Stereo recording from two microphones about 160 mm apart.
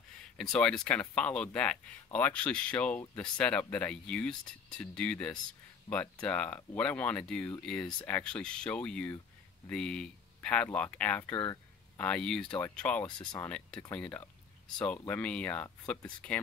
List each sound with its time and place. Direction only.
0.4 s speech: 5° left (ahead or behind)
11.3 s speech: 30° left (ahead or behind)
12.0 s speech: 5° left (ahead or behind)
13.0 s speech: 25° left (ahead or behind)
13.4 s speech: 10° left (ahead or behind)